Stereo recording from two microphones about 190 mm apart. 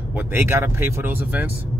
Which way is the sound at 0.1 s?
10° right (ahead or behind).